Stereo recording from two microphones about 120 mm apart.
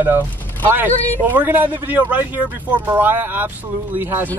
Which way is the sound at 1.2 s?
15° right (ahead or behind).